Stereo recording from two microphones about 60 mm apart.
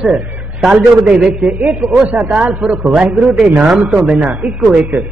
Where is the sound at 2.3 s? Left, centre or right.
Centre.